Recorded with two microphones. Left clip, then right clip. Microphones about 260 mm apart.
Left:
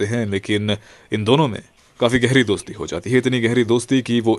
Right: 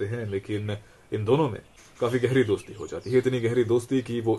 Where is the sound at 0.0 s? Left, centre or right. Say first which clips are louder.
Left 8 dB; left.